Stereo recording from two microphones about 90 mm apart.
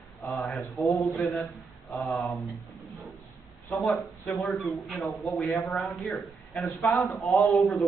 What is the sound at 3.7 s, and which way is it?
Speech, centre (ahead or behind).